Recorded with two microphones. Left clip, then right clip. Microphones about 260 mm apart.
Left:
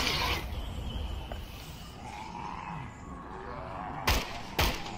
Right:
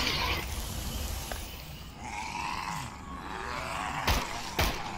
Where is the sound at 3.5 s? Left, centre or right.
Right.